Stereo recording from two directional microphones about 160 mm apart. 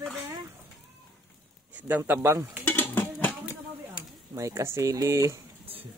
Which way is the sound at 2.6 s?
10° left (ahead or behind).